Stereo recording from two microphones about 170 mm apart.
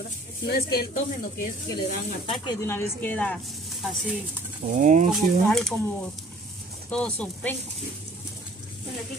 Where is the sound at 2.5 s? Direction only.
15° left (ahead or behind); by 4.1 s centre (ahead or behind).